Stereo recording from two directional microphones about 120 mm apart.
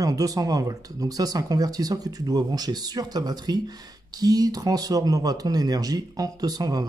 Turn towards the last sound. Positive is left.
turn(degrees=-30)  # may be behind; listen again after turning